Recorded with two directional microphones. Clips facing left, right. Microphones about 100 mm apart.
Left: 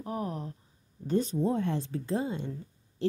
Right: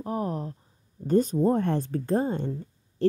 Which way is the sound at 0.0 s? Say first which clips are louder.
Right 5 dB; 35° right (ahead or behind).